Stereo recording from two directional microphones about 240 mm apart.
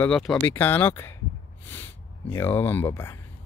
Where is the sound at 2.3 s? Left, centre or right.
Centre.